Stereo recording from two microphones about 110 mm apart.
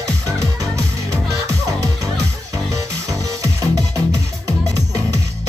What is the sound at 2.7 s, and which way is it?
Music, 30° right (ahead or behind).